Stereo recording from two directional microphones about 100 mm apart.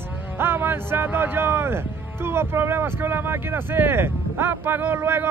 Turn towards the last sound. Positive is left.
turn(degrees=-20)  # may be behind; listen again after turning